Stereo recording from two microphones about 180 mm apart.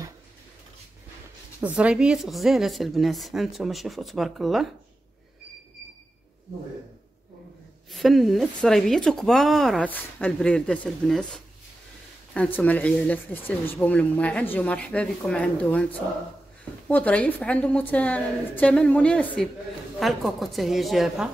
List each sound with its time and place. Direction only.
1.6 s speech: 5° right (ahead or behind)
7.9 s speech: centre (ahead or behind)